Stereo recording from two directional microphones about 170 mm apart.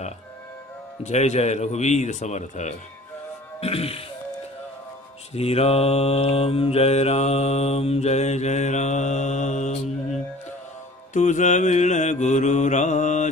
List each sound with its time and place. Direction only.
1.0 s mantra: 40° left (ahead or behind)
5.3 s mantra: 35° left (ahead or behind)
11.1 s mantra: 45° left (ahead or behind)